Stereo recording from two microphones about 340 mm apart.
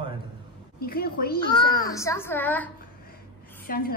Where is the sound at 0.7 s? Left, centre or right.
Left.